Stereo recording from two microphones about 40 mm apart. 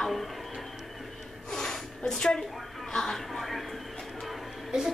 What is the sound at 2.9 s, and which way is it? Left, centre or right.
Speech, centre.